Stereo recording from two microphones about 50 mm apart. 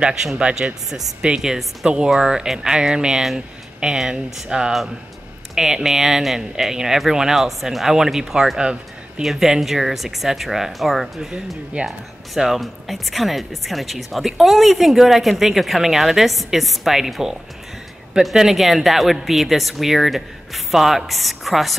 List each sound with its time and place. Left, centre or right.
0.1 s speech: centre
0.8 s speech: centre
5.5 s speech: centre
11.7 s speech: right
12.4 s speech: centre